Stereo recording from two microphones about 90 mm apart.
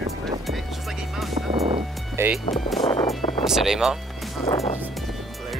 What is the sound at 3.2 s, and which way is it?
Music, 90° left.